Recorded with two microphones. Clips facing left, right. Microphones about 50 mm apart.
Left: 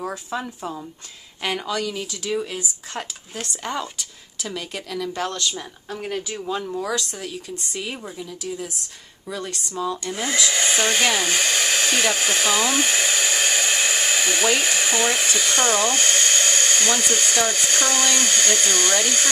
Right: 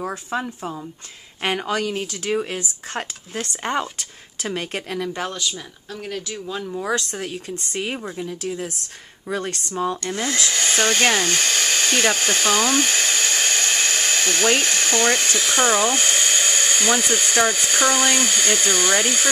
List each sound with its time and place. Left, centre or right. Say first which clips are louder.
0.3 s speech: right 2 dB; right
5.2 s speech: left 1 dB; centre
5.5 s speech: left 2 dB; centre
6.5 s speech: left 2 dB; centre
6.8 s speech: right 2 dB; right
10.1 s hair dryer: even; centre